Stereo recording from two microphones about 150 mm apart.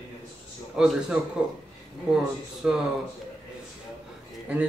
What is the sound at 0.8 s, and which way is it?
Speech, 5° right (ahead or behind).